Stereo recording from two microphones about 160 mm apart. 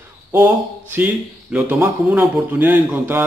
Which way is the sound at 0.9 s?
10° right (ahead or behind).